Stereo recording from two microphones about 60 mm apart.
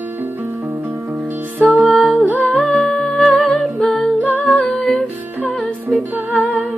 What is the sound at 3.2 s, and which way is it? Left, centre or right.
Humming, centre.